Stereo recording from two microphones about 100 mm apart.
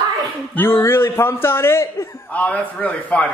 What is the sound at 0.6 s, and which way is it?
A man's voice, 25° left (ahead or behind).